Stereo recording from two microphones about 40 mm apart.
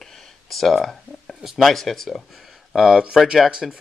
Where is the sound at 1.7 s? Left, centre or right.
Centre.